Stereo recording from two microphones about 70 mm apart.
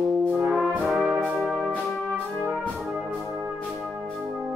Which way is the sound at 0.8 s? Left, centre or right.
Centre.